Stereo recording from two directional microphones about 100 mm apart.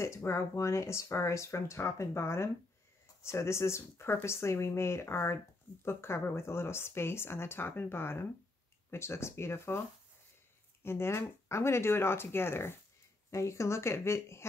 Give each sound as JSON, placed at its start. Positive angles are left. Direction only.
{"t": 0.0, "sound": "speech", "side_deg": 30}